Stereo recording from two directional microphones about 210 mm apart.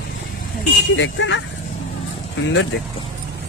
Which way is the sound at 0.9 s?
60° left (ahead or behind).